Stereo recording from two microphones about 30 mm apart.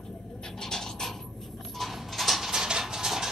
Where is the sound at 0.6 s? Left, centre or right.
Centre.